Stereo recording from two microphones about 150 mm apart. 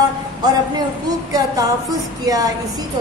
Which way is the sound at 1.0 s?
25° right (ahead or behind).